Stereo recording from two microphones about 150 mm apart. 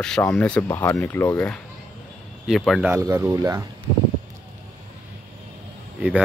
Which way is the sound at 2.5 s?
Centre (ahead or behind).